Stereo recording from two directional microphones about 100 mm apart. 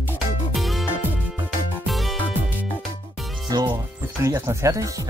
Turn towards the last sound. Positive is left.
turn(degrees=-30)  # may be behind; listen again after turning